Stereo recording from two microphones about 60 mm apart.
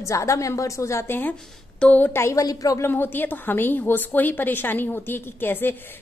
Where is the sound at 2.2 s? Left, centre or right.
Left.